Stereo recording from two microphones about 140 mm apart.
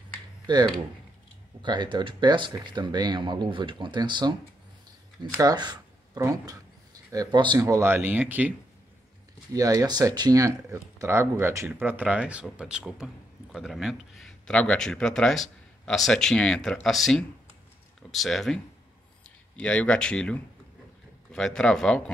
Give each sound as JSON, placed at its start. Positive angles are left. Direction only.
{"t": 0.5, "sound": "speech", "side_deg": -30}
{"t": 5.4, "sound": "a sound", "side_deg": -30}
{"t": 6.2, "sound": "speech", "side_deg": -25}
{"t": 7.6, "sound": "speech", "side_deg": -20}
{"t": 9.5, "sound": "speech", "side_deg": -25}